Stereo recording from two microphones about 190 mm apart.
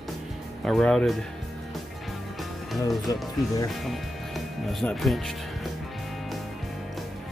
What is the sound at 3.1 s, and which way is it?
Speech, 20° left (ahead or behind).